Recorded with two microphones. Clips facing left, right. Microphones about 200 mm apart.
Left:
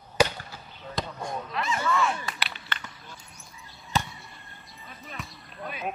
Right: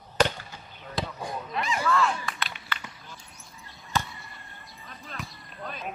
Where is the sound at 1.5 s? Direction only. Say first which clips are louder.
Right 1 dB; 15° right (ahead or behind).